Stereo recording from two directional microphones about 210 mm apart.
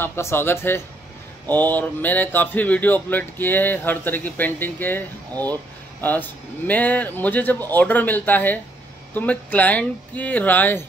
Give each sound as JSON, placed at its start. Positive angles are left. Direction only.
{"t": 0.0, "sound": "speech", "side_deg": 10}